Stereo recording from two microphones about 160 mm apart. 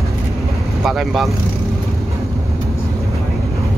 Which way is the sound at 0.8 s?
Centre (ahead or behind).